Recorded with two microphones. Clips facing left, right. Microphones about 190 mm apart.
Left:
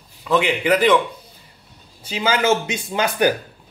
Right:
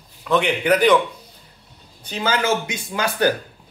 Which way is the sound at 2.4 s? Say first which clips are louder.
Left 3 dB; 20° left (ahead or behind).